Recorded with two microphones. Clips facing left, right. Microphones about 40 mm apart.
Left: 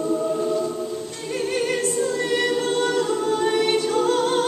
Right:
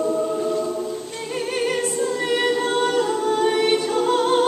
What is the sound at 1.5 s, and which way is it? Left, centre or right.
Choir, centre.